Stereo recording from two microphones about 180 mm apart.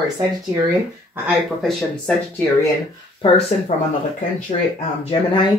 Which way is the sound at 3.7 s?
40° left (ahead or behind).